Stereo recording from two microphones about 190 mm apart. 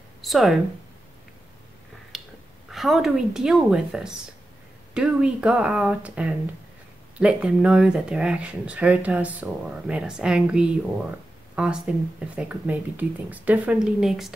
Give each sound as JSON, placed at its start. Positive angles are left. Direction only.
{"t": 0.2, "sound": "speech", "side_deg": 0}
{"t": 2.1, "sound": "finger snapping", "side_deg": 0}
{"t": 2.7, "sound": "speech", "side_deg": 0}